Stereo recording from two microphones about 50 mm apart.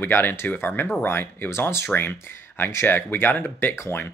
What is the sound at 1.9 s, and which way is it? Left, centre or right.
Speech, left.